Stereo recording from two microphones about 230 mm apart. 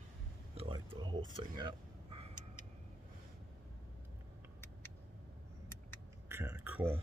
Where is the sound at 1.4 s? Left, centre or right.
Right.